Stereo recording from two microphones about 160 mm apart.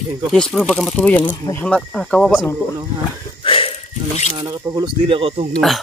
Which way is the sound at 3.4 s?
35° left (ahead or behind).